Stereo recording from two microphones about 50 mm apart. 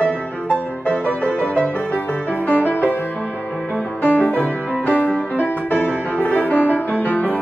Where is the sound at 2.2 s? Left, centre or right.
Left.